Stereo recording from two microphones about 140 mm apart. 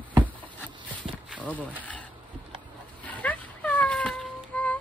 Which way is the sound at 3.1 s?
10° left (ahead or behind).